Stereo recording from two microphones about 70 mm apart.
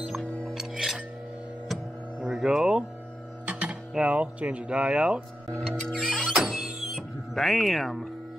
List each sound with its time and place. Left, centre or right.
0.6 s music: centre
3.4 s speech: centre
5.9 s music: centre